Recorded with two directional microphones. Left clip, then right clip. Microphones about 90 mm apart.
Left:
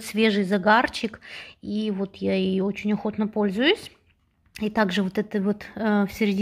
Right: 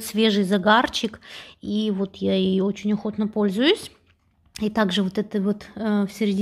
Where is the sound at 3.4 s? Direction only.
15° right (ahead or behind); by 6.4 s centre (ahead or behind).